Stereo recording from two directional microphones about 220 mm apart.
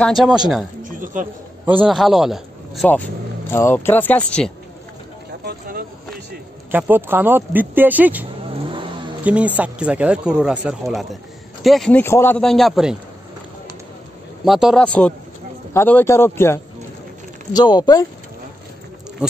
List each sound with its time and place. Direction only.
0.0 s speech: centre (ahead or behind)
0.8 s speech: 35° right (ahead or behind)
1.7 s speech: 5° right (ahead or behind)
6.7 s speech: 10° right (ahead or behind)
14.4 s speech: centre (ahead or behind); by 18.0 s 20° left (ahead or behind)